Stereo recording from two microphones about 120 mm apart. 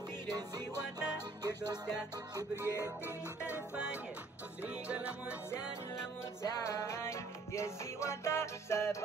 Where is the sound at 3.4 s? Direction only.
10° right (ahead or behind).